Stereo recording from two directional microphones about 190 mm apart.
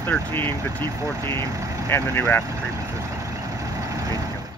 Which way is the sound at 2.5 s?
15° right (ahead or behind).